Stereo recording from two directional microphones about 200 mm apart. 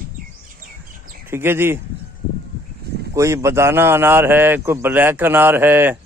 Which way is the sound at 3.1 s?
15° right (ahead or behind).